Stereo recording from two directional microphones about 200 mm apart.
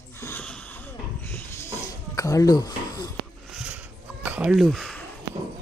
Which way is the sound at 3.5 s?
5° right (ahead or behind).